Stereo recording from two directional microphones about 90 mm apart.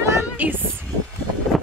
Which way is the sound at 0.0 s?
30° right (ahead or behind).